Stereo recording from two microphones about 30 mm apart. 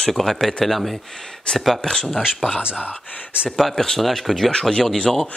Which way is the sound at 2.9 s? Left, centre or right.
Left.